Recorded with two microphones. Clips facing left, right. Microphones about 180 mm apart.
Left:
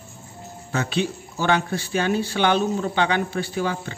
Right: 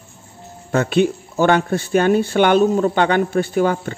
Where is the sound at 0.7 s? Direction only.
55° right (ahead or behind).